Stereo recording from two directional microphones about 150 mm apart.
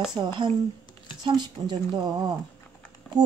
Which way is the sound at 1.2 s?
30° right (ahead or behind).